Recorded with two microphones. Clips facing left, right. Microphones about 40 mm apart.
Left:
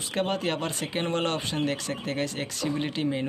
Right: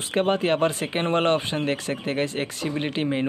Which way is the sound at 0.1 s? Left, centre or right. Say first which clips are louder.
Right 6 dB; right.